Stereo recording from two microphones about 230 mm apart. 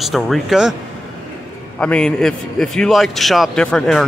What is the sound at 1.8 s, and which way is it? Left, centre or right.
Speech, centre.